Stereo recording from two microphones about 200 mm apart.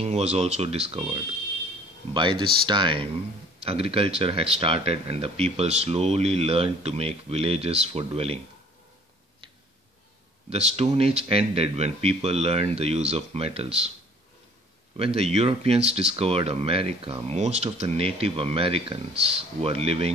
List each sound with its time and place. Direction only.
0.0 s speech: 35° right (ahead or behind)
10.5 s speech: 30° right (ahead or behind)
15.0 s speech: 30° right (ahead or behind)